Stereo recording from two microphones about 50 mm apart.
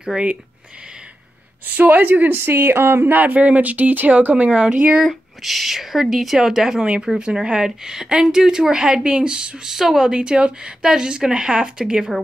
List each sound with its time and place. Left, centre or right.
0.0 s speech: centre
1.7 s speech: right
4.5 s speech: right
5.0 s speech: centre; by 9.6 s right
9.7 s speech: centre